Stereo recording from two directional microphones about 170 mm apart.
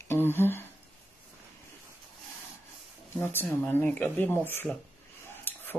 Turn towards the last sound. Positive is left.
turn(degrees=10)  # may be behind; listen again after turning